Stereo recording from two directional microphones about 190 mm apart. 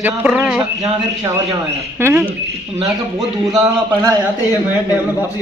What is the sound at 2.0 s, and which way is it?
Speech, 10° right (ahead or behind).